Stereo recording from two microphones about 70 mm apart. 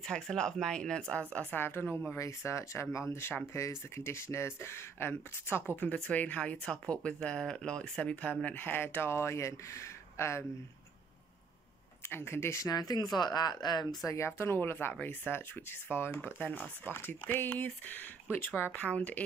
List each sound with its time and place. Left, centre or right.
0.0 s speech: centre
1.5 s speech: left
2.1 s speech: left
5.8 s speech: left
12.1 s speech: left
12.6 s speech: left
14.0 s speech: left; by 19.2 s centre